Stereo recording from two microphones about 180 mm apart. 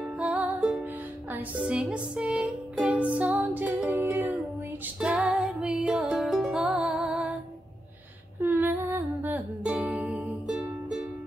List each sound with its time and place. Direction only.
0.2 s music: 5° right (ahead or behind)
8.4 s music: 10° right (ahead or behind)